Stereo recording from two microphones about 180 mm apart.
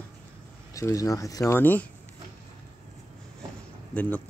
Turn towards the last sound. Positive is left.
turn(degrees=10)  # may be behind; listen again after turning